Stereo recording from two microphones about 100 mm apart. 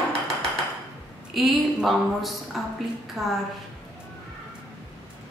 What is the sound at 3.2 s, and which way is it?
Speech, 30° right (ahead or behind).